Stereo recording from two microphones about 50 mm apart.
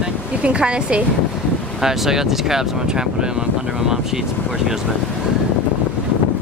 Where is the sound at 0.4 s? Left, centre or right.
Right.